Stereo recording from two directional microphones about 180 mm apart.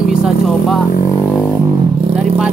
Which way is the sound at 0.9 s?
35° left (ahead or behind).